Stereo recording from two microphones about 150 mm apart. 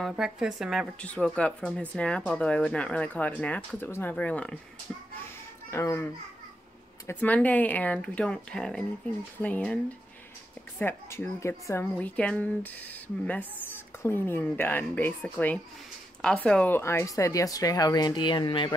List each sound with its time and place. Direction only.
0.0 s speech: 5° right (ahead or behind)
5.7 s speech: 15° left (ahead or behind)
7.1 s speech: 10° left (ahead or behind)
10.8 s speech: 15° left (ahead or behind); by 18.8 s 30° left (ahead or behind)